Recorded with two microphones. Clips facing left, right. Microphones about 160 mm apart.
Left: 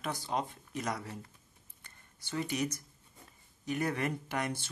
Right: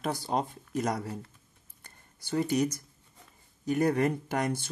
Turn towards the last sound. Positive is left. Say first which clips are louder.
# right 5 dB
turn(degrees=-40)  # may be behind; listen again after turning